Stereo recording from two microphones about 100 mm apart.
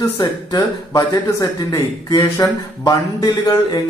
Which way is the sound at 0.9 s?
35° left (ahead or behind).